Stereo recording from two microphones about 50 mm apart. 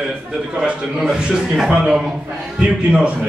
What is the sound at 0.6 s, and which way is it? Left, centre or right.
A man's voice, centre.